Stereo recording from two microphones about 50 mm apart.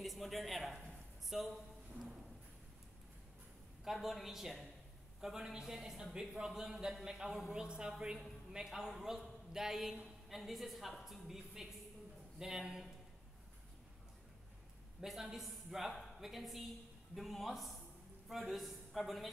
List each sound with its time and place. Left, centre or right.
0.0 s a man's voice: centre
3.8 s a woman's voice: centre
7.5 s a woman's voice: centre
15.0 s a man's voice: centre